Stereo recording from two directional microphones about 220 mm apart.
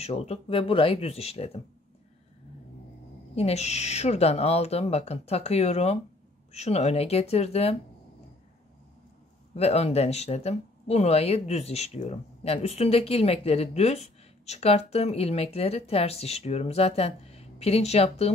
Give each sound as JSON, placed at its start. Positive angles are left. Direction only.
{"t": 0.0, "sound": "speech", "side_deg": 30}
{"t": 3.3, "sound": "speech", "side_deg": 30}
{"t": 9.6, "sound": "speech", "side_deg": 30}